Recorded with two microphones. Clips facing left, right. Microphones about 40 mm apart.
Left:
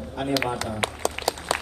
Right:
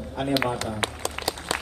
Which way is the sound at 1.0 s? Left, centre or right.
Right.